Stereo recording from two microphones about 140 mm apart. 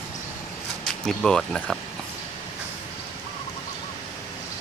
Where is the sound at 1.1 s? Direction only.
5° left (ahead or behind).